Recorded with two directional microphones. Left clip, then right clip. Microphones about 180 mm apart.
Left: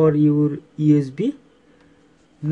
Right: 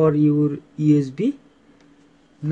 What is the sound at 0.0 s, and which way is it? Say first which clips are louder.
Speech: left 1 dB; centre (ahead or behind).